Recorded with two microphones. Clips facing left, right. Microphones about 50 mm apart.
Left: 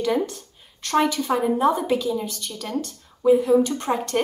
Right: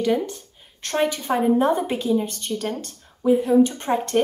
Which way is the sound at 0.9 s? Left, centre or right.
Right.